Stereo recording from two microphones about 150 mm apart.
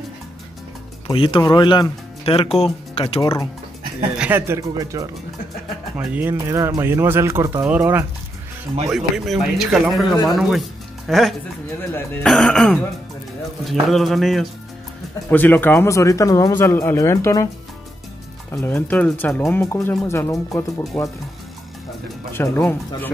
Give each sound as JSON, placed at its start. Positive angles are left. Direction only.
{"t": 1.1, "sound": "speech", "side_deg": 35}
{"t": 3.2, "sound": "speech", "side_deg": 25}
{"t": 4.2, "sound": "speech", "side_deg": -15}
{"t": 5.9, "sound": "speech", "side_deg": -10}
{"t": 8.8, "sound": "speech", "side_deg": -5}
{"t": 15.2, "sound": "speech", "side_deg": 10}
{"t": 18.5, "sound": "speech", "side_deg": 15}
{"t": 22.3, "sound": "speech", "side_deg": 15}